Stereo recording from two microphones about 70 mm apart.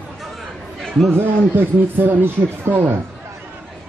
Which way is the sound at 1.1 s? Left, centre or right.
Right.